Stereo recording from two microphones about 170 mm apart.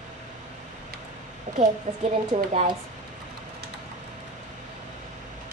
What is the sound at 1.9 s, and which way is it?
Speech, 45° right (ahead or behind).